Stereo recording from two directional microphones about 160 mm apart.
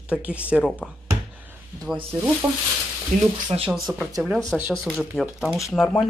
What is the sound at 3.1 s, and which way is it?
Speech, 55° right (ahead or behind).